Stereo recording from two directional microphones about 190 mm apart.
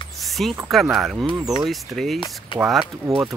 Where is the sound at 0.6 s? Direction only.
Centre (ahead or behind).